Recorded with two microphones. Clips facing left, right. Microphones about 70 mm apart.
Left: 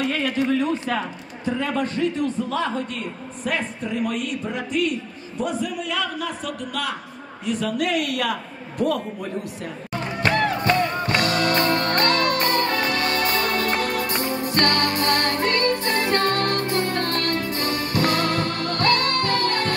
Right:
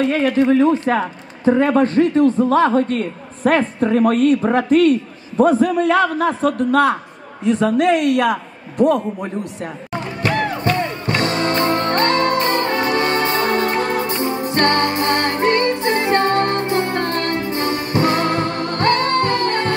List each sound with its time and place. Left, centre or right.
0.0 s a man's voice: right
10.2 s music: right